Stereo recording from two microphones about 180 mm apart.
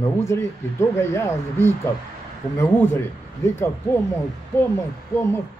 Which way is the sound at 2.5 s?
10° left (ahead or behind).